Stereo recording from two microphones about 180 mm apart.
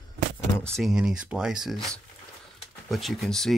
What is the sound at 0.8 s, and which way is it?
Speech, 5° right (ahead or behind).